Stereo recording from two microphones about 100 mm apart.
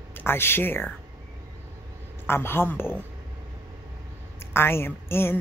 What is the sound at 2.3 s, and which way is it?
Speech, 25° left (ahead or behind).